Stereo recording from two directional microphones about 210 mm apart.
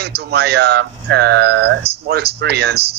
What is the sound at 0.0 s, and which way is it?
Speech, 50° right (ahead or behind).